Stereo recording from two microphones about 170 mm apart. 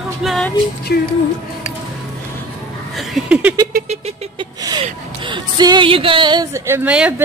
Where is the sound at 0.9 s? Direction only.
70° left (ahead or behind).